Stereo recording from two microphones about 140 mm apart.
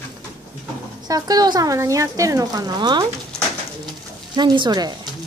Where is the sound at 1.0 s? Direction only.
25° right (ahead or behind).